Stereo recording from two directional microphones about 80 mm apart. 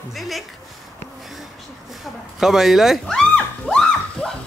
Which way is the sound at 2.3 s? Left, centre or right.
Centre.